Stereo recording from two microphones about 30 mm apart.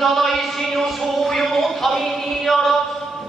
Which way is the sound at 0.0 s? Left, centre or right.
Centre.